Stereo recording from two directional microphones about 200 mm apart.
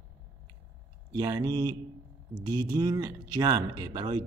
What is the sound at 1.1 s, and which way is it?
Speech, 20° right (ahead or behind).